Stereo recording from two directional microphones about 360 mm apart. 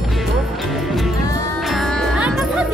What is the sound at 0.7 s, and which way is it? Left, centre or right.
Music, centre.